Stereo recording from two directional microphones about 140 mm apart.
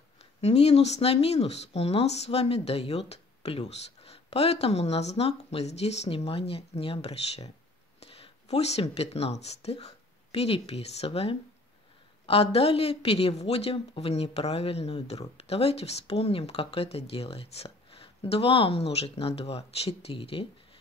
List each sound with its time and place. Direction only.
0.2 s speech: 50° left (ahead or behind)